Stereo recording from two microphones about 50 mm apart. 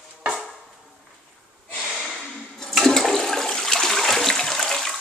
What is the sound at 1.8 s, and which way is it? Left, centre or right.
Snort, centre.